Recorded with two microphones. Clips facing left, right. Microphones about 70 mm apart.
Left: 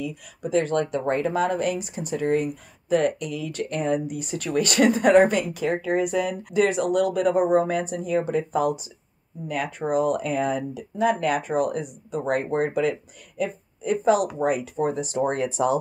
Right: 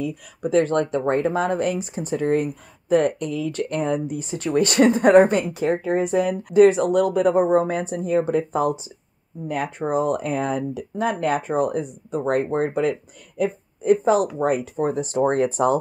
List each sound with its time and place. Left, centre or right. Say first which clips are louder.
0.0 s speech: right 4 dB; right